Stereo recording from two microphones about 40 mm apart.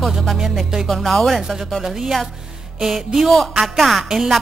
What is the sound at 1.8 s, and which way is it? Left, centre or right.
A woman's voice, centre.